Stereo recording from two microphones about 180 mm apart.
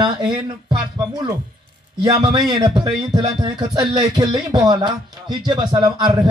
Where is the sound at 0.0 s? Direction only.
25° right (ahead or behind).